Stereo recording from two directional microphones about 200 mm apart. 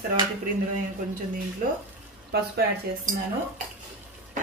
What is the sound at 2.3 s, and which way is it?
Speech, 50° right (ahead or behind).